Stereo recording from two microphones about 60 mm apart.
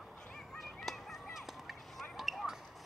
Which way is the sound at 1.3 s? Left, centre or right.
Centre.